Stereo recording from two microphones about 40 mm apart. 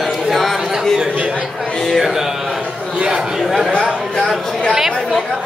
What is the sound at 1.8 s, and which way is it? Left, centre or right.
Music, centre.